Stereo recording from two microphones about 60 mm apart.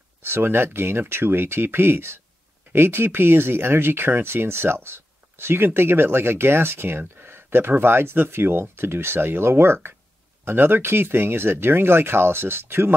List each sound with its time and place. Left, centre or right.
0.2 s speech: right